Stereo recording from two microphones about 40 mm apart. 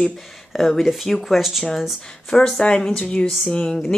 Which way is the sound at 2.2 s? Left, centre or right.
Centre.